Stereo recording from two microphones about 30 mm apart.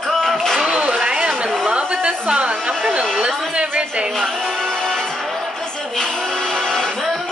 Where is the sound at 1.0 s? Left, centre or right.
Right.